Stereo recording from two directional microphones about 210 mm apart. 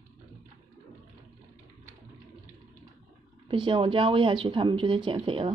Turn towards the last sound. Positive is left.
turn(degrees=-25)  # may be behind; listen again after turning